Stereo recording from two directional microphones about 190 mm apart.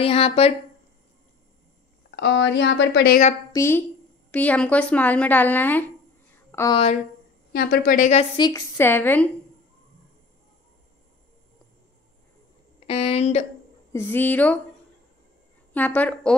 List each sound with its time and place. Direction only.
0.0 s a woman's voice: 30° left (ahead or behind)
2.1 s a woman's voice: 65° left (ahead or behind)
3.5 s speech: 15° left (ahead or behind)
6.7 s a woman's voice: 30° left (ahead or behind)
7.5 s a woman's voice: 50° left (ahead or behind)
8.4 s speech: 20° left (ahead or behind)
12.8 s a woman's voice: 35° left (ahead or behind)
13.9 s speech: 10° left (ahead or behind)
15.7 s speech: 10° left (ahead or behind)